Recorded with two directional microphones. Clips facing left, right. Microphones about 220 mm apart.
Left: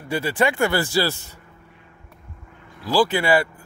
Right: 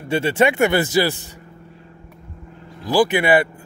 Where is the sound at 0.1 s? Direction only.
25° right (ahead or behind).